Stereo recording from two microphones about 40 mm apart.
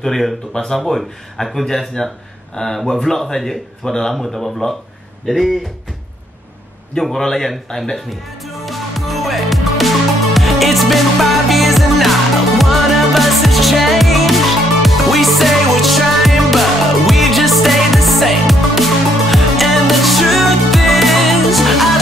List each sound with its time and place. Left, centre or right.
0.0 s speech: centre
0.7 s speech: centre
7.0 s speech: centre
8.6 s music: centre